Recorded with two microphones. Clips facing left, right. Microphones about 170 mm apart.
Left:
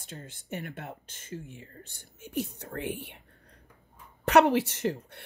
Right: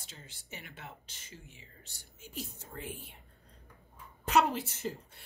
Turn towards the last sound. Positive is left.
turn(degrees=70)  # may be behind; listen again after turning